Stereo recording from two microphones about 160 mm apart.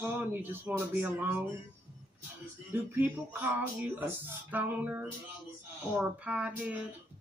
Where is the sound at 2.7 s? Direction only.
15° right (ahead or behind).